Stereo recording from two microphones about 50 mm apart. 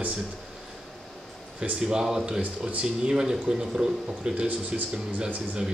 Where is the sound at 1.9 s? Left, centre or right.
Centre.